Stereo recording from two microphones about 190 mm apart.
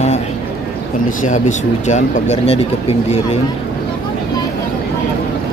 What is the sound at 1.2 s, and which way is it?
Speech, 40° left (ahead or behind).